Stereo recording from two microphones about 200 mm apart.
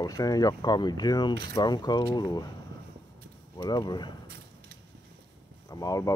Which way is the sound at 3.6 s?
20° left (ahead or behind).